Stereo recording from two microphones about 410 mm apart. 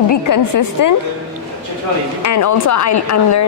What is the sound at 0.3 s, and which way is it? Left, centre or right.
Speech, left.